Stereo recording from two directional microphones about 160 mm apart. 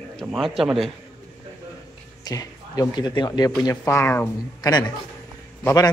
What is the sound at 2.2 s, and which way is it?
A man's voice, 20° left (ahead or behind).